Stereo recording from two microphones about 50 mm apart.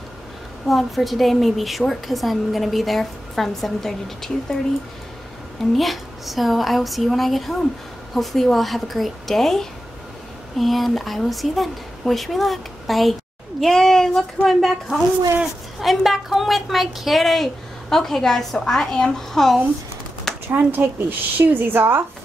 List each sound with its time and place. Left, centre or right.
0.7 s a woman's voice: centre
5.8 s a woman's voice: centre
20.5 s speech: right